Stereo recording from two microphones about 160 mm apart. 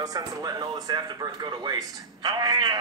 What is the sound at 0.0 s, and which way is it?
A woman's voice, 25° right (ahead or behind).